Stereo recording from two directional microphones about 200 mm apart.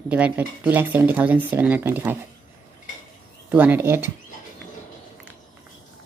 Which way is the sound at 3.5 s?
10° right (ahead or behind).